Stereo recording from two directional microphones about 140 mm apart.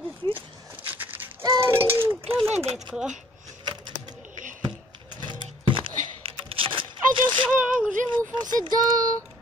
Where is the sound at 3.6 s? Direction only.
35° right (ahead or behind).